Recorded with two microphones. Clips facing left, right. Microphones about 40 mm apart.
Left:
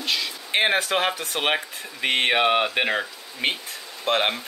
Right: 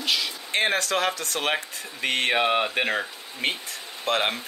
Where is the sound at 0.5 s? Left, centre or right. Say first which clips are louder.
Left 3 dB; centre.